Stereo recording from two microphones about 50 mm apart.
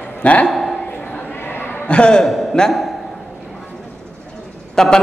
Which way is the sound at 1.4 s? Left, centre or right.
Left.